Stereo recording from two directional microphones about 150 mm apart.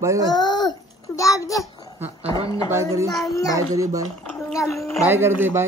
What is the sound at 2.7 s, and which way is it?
Speech, 20° right (ahead or behind).